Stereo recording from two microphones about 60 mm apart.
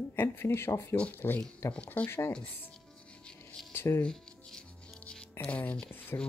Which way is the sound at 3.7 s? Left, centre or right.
Left.